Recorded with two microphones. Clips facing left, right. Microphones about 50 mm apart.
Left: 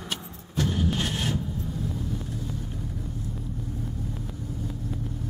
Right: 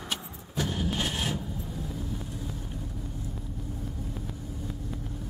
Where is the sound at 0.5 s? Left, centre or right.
Centre.